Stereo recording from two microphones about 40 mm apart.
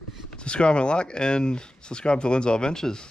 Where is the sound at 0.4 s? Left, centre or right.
Left.